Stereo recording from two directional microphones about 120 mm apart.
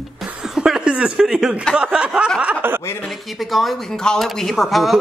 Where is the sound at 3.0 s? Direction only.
Centre (ahead or behind).